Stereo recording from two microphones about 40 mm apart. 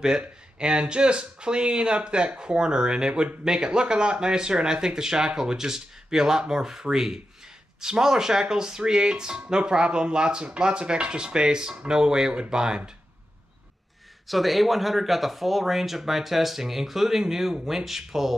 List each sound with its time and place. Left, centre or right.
0.6 s speech: right
14.2 s speech: centre